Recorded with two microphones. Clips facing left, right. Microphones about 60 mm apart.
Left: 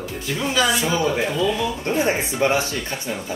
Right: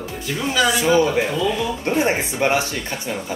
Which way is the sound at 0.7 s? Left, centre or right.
Right.